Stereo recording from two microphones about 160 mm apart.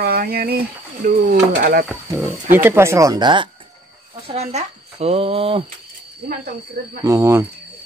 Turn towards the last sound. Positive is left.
turn(degrees=-20)  # may be behind; listen again after turning